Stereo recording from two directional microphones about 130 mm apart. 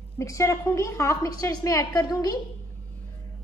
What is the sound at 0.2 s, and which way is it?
A woman's voice, 25° left (ahead or behind).